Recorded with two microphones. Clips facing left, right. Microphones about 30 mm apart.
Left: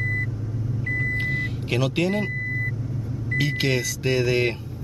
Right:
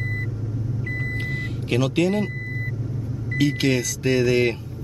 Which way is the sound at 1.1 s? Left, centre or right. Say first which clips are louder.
Left 3 dB; centre.